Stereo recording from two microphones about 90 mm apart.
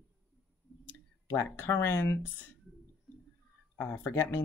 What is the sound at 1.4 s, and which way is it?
Speech, 25° left (ahead or behind).